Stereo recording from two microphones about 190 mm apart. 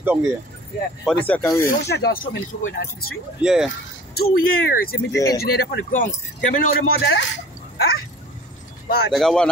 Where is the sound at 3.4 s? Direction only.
5° right (ahead or behind).